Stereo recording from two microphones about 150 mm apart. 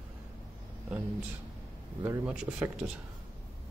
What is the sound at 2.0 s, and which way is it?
Speech, 15° right (ahead or behind).